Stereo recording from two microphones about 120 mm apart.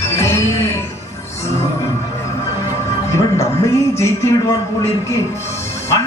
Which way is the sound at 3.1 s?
25° left (ahead or behind).